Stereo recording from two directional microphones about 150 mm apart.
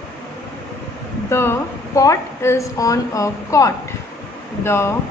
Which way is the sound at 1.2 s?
15° left (ahead or behind).